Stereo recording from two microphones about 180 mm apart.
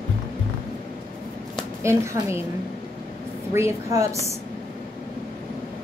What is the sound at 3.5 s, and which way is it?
Speech, 15° right (ahead or behind).